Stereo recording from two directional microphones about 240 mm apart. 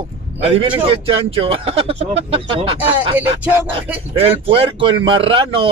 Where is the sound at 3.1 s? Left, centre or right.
Centre.